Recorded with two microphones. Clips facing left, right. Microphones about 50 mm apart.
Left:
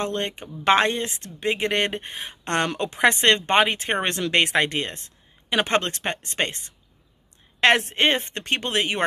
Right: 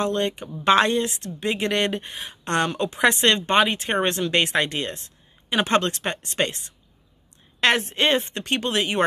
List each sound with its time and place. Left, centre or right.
0.0 s speech: left